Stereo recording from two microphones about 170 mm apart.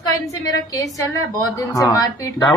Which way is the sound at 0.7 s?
20° left (ahead or behind).